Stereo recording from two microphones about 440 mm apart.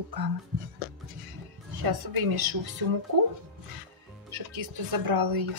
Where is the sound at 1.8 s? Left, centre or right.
Right.